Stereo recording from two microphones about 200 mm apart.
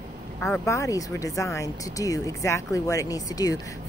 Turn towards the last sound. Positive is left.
turn(degrees=20)  # may be behind; listen again after turning